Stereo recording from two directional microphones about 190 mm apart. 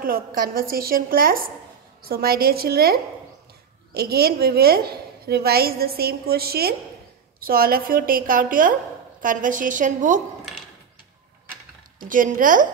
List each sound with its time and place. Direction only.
0.0 s a woman's voice: 50° right (ahead or behind)
12.0 s a woman's voice: 45° right (ahead or behind)